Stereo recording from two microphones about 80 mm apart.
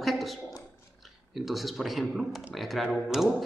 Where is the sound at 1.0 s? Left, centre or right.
Centre.